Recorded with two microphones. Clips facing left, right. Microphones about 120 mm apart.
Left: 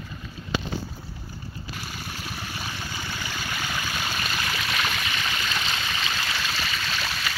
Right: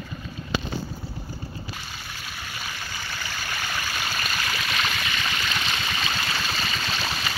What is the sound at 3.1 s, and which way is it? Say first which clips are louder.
Stream: right 1 dB; 15° left (ahead or behind).